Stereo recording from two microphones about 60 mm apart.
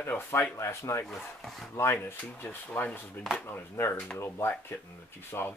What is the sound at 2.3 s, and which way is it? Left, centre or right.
Speech, left.